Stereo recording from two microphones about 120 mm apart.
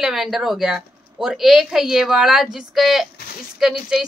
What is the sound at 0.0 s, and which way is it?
Speech, 5° right (ahead or behind).